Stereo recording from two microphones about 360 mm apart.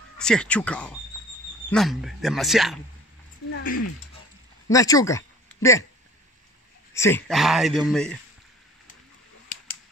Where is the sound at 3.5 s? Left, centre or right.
Left.